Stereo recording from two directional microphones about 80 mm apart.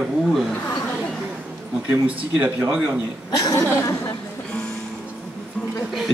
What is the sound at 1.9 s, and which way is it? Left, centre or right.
Speech, centre.